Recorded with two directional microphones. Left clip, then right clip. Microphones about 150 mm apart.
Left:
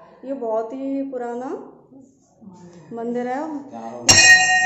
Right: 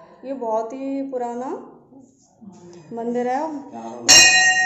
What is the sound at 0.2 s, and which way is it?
A woman's voice, centre (ahead or behind).